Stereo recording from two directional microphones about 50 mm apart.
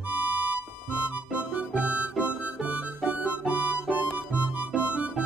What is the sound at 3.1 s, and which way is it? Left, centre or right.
Harmonica, right.